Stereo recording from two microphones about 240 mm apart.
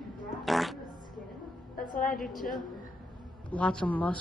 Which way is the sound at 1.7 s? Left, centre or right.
Left.